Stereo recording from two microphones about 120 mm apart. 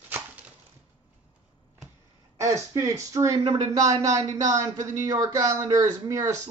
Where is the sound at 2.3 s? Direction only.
25° right (ahead or behind).